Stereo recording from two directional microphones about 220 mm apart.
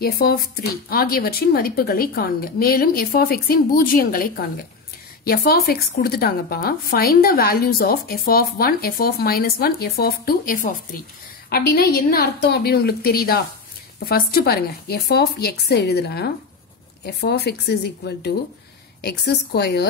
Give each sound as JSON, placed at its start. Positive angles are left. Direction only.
{"t": 0.0, "sound": "a woman's voice", "side_deg": 45}